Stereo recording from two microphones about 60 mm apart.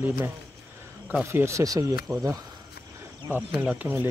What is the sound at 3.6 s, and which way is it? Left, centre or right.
Speech, right.